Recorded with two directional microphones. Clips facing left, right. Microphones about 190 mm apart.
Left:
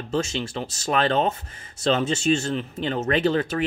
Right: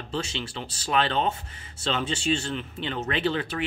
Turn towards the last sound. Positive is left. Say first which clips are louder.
# left 5 dB
turn(degrees=45)  # may be behind; listen again after turning